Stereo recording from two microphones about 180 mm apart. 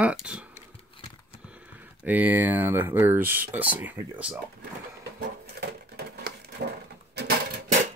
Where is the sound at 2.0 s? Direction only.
10° right (ahead or behind).